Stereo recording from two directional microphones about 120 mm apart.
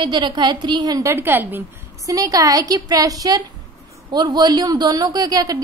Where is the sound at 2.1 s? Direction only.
30° right (ahead or behind).